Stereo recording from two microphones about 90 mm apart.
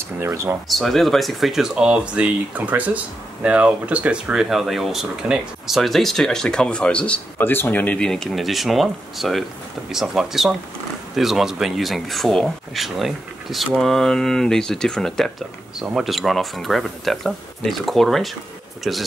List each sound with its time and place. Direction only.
0.2 s speech: 30° right (ahead or behind)
0.7 s speech: centre (ahead or behind); by 8.0 s 20° left (ahead or behind)
8.0 s speech: 5° left (ahead or behind)